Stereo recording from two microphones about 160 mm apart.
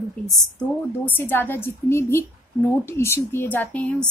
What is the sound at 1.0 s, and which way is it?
A woman's voice, 15° left (ahead or behind).